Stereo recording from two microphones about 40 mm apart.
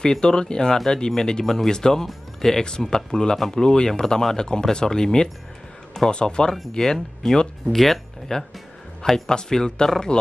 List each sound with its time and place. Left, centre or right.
0.0 s speech: centre
1.4 s speech: centre
3.3 s speech: centre
3.6 s speech: centre
7.6 s speech: centre